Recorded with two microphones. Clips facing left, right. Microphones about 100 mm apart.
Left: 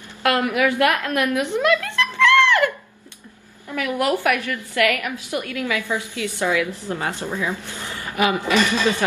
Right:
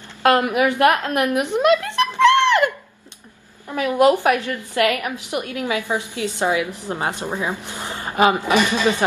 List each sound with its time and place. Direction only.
0.2 s a woman's voice: 20° right (ahead or behind)